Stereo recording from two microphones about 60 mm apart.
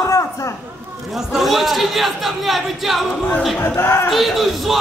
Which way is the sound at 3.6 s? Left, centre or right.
Left.